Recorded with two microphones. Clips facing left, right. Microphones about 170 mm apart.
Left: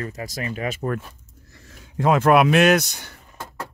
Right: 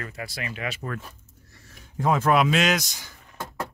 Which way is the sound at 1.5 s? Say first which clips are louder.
Left 5 dB; 80° left.